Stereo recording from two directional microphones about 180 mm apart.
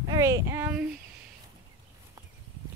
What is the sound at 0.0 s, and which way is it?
Speech, 20° right (ahead or behind).